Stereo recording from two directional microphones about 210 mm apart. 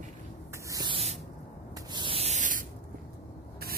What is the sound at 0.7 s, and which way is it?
Spray, 20° right (ahead or behind).